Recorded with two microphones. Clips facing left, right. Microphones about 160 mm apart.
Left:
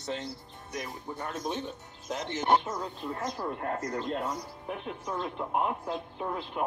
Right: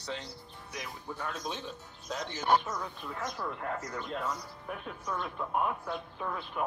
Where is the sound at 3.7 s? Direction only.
50° left (ahead or behind).